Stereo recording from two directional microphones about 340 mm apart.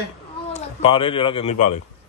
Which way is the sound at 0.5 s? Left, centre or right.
Centre.